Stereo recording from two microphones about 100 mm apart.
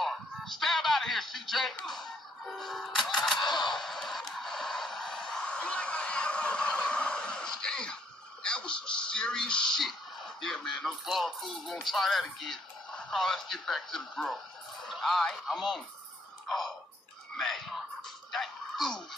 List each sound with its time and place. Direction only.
0.0 s music: centre (ahead or behind)
3.2 s speech: centre (ahead or behind)
3.7 s a sound: centre (ahead or behind)
8.5 s speech: 10° left (ahead or behind)
16.4 s a sound: centre (ahead or behind)
17.4 s whispering: centre (ahead or behind)
18.3 s music: centre (ahead or behind)